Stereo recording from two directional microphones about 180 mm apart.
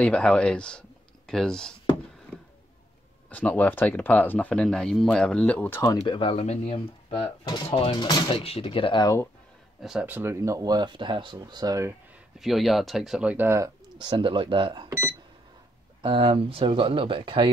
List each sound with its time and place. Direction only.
0.0 s speech: 5° left (ahead or behind)
3.3 s speech: 10° left (ahead or behind)
9.8 s speech: centre (ahead or behind); by 11.9 s 20° right (ahead or behind)
12.4 s speech: centre (ahead or behind)
13.9 s speech: 25° right (ahead or behind)
16.0 s speech: 30° right (ahead or behind)